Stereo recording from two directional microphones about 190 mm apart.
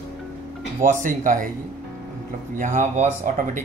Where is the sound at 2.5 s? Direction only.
40° right (ahead or behind).